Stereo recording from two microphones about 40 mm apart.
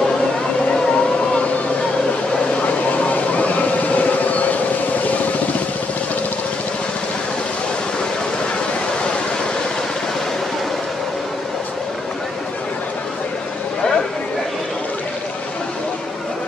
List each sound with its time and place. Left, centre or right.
0.7 s vehicle: left
2.6 s vehicle: left